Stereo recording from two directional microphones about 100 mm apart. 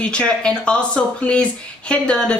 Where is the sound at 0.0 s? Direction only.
10° left (ahead or behind).